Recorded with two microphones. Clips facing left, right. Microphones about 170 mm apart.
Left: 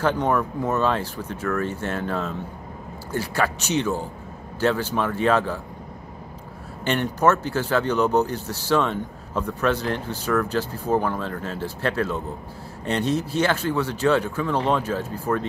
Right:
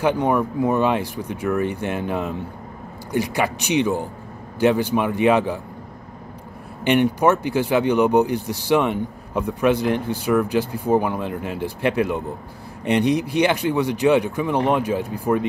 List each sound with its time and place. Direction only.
0.0 s speech: 10° right (ahead or behind)
6.8 s speech: 15° right (ahead or behind)